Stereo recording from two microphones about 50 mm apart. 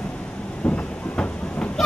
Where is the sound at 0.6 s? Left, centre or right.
Left.